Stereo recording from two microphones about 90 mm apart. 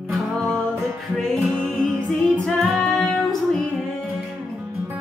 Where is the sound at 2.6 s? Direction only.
Centre (ahead or behind).